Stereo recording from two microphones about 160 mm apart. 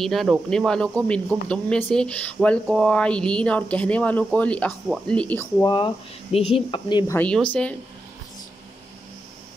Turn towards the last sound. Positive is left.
turn(degrees=5)  # may be behind; listen again after turning